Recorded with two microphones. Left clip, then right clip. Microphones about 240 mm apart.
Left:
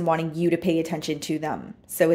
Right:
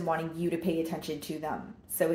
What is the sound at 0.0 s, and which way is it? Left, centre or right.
Speech, left.